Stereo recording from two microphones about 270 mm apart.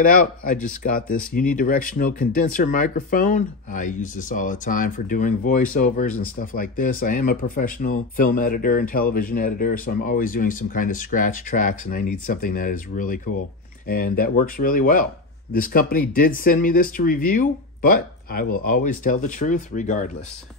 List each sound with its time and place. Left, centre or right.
0.0 s speech: left